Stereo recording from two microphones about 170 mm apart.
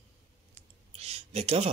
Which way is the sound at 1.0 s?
40° right (ahead or behind).